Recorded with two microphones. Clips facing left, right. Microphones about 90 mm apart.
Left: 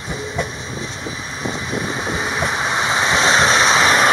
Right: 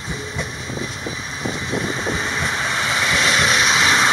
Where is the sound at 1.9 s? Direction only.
10° left (ahead or behind).